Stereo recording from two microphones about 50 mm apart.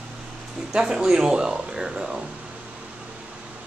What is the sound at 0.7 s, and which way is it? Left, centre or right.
Speech, centre.